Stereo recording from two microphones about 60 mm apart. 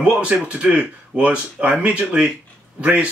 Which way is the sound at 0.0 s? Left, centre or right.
Centre.